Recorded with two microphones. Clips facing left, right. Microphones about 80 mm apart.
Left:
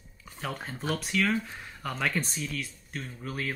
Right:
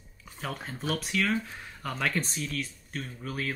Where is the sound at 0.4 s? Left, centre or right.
Centre.